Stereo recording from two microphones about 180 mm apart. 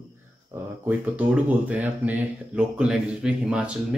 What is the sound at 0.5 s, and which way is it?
Speech, 15° right (ahead or behind).